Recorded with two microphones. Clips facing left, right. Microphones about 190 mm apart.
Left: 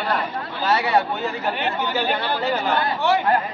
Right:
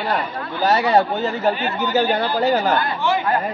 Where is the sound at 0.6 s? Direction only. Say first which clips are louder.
Right 4 dB; 40° right (ahead or behind).